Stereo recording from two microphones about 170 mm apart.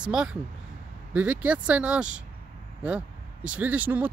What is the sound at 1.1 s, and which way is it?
Speech, 10° right (ahead or behind).